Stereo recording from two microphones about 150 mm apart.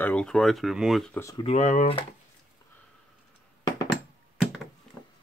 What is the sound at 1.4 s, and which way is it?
Speech, 45° left (ahead or behind).